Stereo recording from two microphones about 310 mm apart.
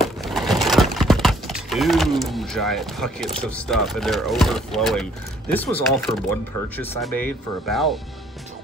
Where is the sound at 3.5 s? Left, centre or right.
Centre.